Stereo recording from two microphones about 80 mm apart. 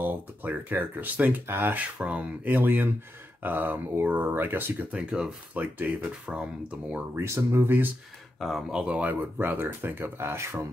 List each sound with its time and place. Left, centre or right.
0.0 s speech: right
4.9 s speech: centre
7.2 s speech: right
8.4 s speech: centre
9.1 s speech: right